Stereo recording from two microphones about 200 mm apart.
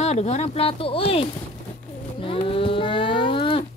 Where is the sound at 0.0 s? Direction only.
35° left (ahead or behind).